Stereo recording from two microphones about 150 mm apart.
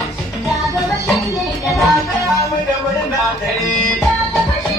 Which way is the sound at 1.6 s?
Centre (ahead or behind).